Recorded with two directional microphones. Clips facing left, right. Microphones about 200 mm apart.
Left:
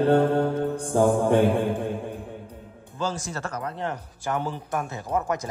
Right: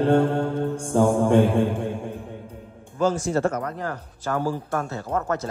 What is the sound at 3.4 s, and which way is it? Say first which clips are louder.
Speech: right 11 dB; 35° right (ahead or behind).